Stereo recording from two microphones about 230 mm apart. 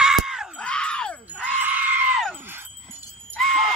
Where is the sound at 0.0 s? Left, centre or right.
Centre.